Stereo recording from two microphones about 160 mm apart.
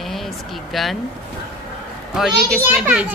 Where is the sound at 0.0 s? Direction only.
Centre (ahead or behind).